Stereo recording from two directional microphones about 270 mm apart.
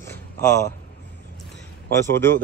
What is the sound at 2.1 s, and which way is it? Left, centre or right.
Speech, centre.